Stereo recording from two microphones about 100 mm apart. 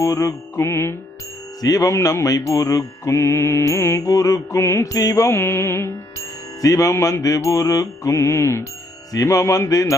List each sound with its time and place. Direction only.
0.0 s music: 35° left (ahead or behind)
1.6 s music: 35° left (ahead or behind)
6.6 s music: 35° left (ahead or behind)